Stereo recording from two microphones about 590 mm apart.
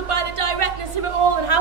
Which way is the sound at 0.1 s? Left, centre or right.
Right.